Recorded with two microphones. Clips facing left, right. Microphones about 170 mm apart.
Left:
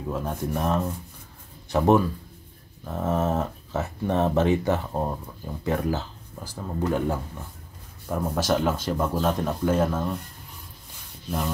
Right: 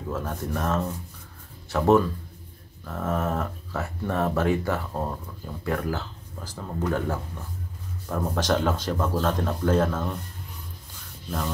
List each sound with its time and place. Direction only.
0.1 s speech: 15° left (ahead or behind)
11.2 s speech: 10° left (ahead or behind)